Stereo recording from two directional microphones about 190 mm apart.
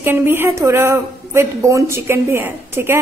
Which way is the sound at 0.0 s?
10° right (ahead or behind).